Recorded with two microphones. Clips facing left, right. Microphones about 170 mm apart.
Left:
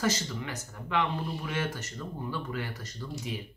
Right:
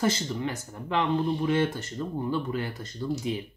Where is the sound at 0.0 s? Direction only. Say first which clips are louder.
Right 4 dB; 30° right (ahead or behind).